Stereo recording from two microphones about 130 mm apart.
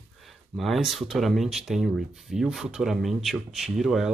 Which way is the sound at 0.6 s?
Centre (ahead or behind).